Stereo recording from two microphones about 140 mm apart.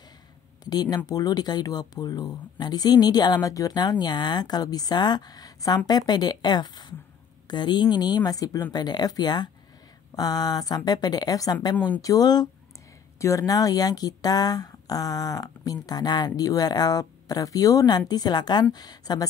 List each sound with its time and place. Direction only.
0.7 s speech: 30° left (ahead or behind)
11.7 s speech: 10° left (ahead or behind)
12.0 s speech: 25° left (ahead or behind)